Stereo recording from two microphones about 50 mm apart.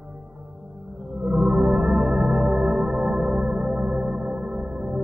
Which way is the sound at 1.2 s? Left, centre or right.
Centre.